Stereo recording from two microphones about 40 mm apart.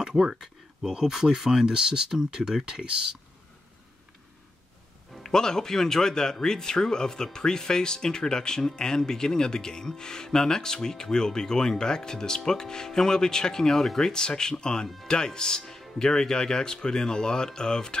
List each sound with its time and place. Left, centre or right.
0.0 s speech: centre
5.2 s speech: centre